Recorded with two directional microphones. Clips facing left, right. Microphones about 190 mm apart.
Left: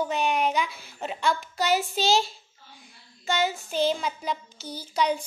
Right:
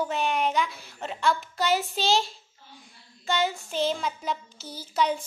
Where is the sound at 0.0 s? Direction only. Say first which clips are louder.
Left 1 dB; centre (ahead or behind).